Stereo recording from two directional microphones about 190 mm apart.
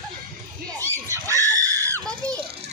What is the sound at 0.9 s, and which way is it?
Screaming, 15° right (ahead or behind).